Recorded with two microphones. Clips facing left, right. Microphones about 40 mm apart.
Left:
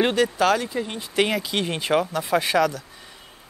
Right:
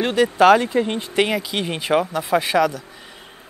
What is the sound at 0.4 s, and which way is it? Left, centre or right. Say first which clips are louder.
Speech: right 7 dB; right.